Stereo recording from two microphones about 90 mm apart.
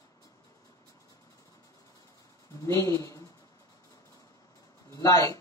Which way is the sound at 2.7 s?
35° left (ahead or behind).